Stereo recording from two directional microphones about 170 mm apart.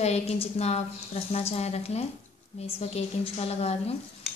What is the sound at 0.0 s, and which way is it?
A woman's voice, 40° left (ahead or behind).